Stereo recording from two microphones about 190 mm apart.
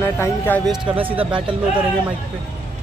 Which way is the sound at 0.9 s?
30° right (ahead or behind).